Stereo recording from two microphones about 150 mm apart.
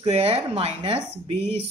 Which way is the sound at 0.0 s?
40° right (ahead or behind).